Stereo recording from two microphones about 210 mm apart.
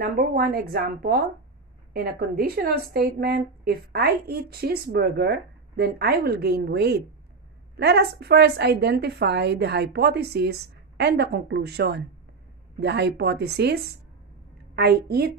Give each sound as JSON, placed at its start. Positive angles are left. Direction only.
{"t": 0.0, "sound": "a woman's voice", "side_deg": -45}